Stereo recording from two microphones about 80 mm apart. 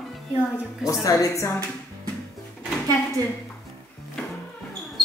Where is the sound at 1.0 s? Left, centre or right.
Left.